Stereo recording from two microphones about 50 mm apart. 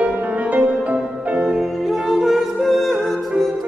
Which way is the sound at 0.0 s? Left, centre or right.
Right.